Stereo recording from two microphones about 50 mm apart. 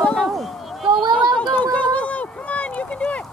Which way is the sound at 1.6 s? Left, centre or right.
Left.